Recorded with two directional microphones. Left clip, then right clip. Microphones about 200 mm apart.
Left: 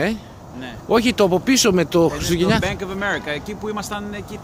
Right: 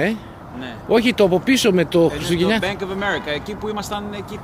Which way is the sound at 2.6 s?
45° left (ahead or behind).